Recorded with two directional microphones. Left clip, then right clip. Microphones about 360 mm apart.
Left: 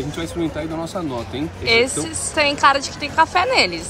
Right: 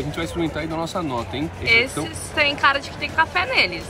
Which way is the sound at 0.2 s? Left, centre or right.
Centre.